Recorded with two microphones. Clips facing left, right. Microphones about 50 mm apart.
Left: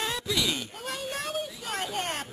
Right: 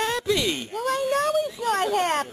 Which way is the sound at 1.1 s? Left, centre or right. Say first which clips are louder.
Right 10 dB; right.